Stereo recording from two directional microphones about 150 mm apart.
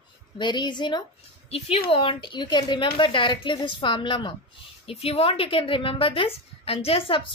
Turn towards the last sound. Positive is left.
turn(degrees=35)  # may be behind; listen again after turning